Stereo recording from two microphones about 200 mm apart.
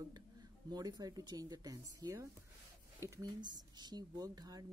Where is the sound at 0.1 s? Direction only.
20° right (ahead or behind).